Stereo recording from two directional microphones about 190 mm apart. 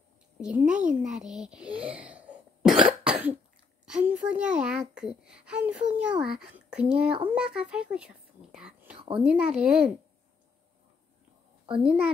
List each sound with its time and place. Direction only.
0.4 s a child's voice: 5° right (ahead or behind)
8.9 s a sound: 25° right (ahead or behind)
9.2 s a child's voice: 5° right (ahead or behind)
11.7 s a child's voice: 5° right (ahead or behind)